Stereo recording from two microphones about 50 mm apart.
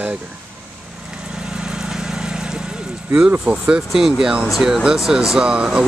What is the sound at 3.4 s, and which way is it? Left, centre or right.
Speech, centre.